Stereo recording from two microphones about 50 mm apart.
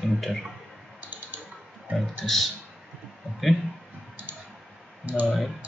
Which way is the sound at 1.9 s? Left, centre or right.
Centre.